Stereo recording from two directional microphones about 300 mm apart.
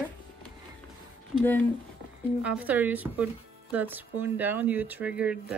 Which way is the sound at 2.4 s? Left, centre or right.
Centre.